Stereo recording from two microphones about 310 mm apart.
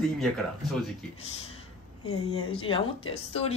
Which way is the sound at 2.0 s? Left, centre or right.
Left.